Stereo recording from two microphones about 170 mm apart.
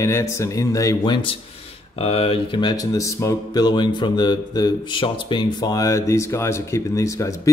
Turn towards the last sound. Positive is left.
turn(degrees=20)  # may be behind; listen again after turning